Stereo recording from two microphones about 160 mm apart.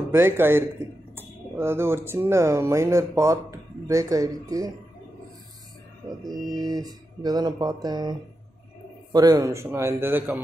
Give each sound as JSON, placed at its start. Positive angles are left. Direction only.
{"t": 0.1, "sound": "a man's voice", "side_deg": -15}
{"t": 6.0, "sound": "a man's voice", "side_deg": -25}